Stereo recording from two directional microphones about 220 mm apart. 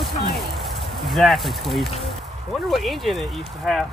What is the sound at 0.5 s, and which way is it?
Speech, centre (ahead or behind).